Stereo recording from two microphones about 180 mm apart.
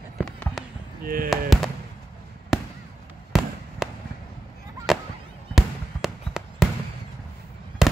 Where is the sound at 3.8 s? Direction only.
Centre (ahead or behind).